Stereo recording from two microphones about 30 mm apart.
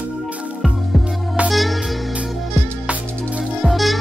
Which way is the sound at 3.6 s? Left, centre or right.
Centre.